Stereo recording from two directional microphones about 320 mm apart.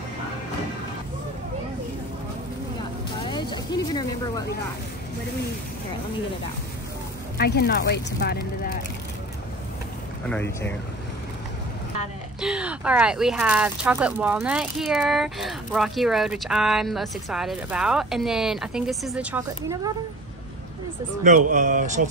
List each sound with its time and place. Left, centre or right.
3.3 s speech: centre
7.3 s speech: left
10.3 s speech: centre
12.4 s speech: centre
21.2 s speech: right